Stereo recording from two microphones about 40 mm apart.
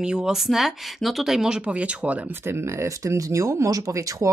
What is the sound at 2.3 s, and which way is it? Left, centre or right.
Speech, right.